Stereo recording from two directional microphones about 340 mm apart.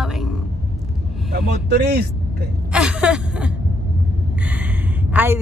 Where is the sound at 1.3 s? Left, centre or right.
Right.